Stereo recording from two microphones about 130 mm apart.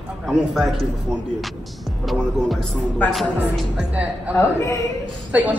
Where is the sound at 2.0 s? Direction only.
Centre (ahead or behind).